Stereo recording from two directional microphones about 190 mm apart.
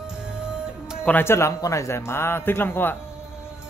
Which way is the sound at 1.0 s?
10° left (ahead or behind).